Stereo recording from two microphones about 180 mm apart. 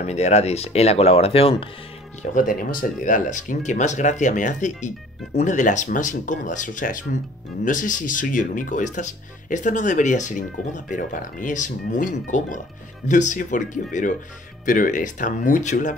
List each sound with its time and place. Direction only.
0.0 s speech: 40° left (ahead or behind)
2.3 s speech: 50° left (ahead or behind)